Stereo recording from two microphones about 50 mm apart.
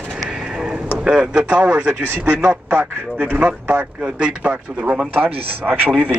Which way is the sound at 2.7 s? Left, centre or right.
Right.